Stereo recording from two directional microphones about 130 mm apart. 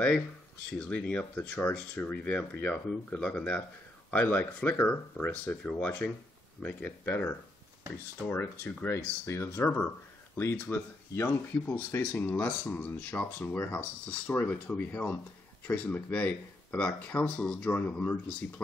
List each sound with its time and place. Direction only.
0.7 s speech: 10° left (ahead or behind)